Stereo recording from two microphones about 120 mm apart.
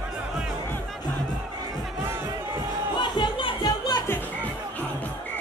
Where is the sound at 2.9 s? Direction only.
45° left (ahead or behind).